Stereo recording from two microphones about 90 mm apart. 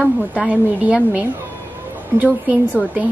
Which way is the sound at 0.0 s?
15° right (ahead or behind).